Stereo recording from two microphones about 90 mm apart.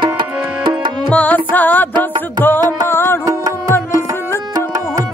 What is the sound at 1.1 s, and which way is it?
Music, 15° left (ahead or behind).